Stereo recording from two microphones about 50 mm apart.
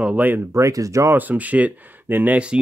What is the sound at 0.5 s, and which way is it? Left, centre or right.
Speech, right.